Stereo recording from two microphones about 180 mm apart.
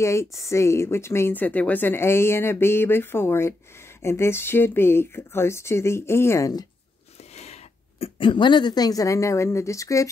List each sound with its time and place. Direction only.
0.0 s speech: 15° left (ahead or behind)
7.3 s speech: 35° left (ahead or behind); by 10.0 s 15° left (ahead or behind)